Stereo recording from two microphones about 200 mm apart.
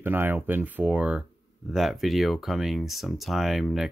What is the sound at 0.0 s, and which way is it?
Speech, 10° right (ahead or behind).